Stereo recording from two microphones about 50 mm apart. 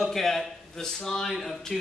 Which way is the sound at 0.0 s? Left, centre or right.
Centre.